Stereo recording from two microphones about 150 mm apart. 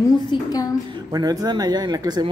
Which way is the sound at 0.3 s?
25° left (ahead or behind).